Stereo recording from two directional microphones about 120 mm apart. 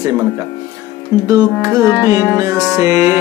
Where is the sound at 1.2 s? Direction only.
30° right (ahead or behind).